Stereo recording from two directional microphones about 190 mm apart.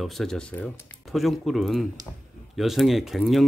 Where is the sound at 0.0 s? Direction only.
Centre (ahead or behind).